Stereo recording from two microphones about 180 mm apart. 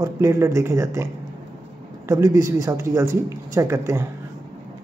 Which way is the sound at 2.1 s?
20° right (ahead or behind).